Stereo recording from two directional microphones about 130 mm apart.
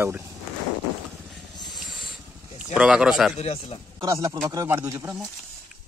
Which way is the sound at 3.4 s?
50° left (ahead or behind).